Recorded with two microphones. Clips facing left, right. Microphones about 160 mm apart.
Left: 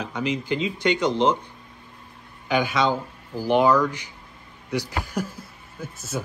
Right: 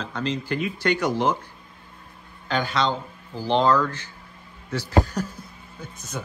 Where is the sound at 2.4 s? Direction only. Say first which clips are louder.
Left 2 dB; 10° left (ahead or behind).